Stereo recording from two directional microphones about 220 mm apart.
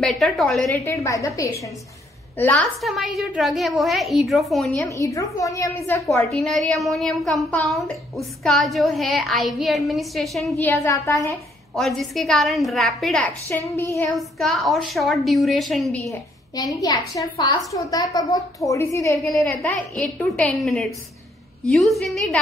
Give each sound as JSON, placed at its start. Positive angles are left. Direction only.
{"t": 0.0, "sound": "a woman's voice", "side_deg": 0}
{"t": 0.7, "sound": "a woman's voice", "side_deg": 15}
{"t": 4.8, "sound": "a woman's voice", "side_deg": 15}
{"t": 6.0, "sound": "a woman's voice", "side_deg": 0}
{"t": 10.7, "sound": "a woman's voice", "side_deg": 15}
{"t": 11.7, "sound": "a woman's voice", "side_deg": 0}
{"t": 14.1, "sound": "a woman's voice", "side_deg": 0}
{"t": 16.1, "sound": "a woman's voice", "side_deg": 15}
{"t": 19.1, "sound": "a woman's voice", "side_deg": 0}